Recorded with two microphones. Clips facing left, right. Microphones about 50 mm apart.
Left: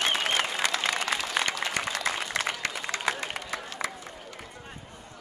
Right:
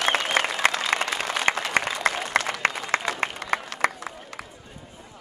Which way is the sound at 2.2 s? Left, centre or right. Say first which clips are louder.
Right 6 dB; right.